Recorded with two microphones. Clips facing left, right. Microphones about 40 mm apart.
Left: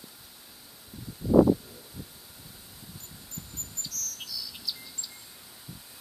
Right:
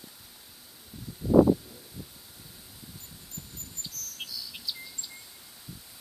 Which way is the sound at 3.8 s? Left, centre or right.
Right.